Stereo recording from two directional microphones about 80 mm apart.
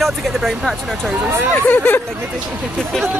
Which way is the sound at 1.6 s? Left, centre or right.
Left.